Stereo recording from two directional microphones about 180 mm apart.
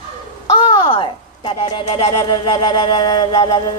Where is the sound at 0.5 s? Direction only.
25° left (ahead or behind).